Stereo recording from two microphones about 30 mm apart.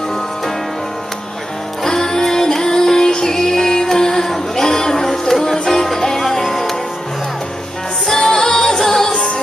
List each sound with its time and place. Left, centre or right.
1.9 s music: centre
8.1 s music: centre